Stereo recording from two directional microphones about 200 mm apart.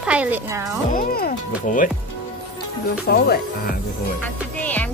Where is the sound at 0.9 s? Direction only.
45° left (ahead or behind).